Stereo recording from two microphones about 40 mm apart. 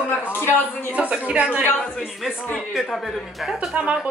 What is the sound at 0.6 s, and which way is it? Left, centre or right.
Speech, left.